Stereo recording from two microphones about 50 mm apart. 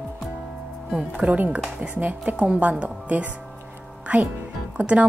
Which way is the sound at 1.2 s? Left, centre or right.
Right.